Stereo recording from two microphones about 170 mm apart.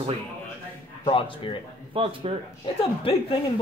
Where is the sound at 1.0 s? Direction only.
30° left (ahead or behind).